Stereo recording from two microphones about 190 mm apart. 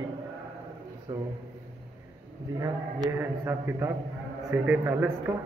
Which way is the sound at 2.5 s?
15° right (ahead or behind).